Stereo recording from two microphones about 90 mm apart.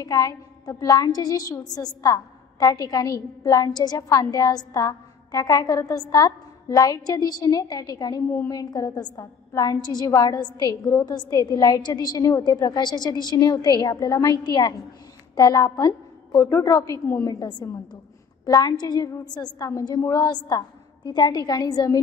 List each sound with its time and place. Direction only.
0.0 s a woman's voice: 40° left (ahead or behind)
17.3 s a woman's voice: 45° left (ahead or behind)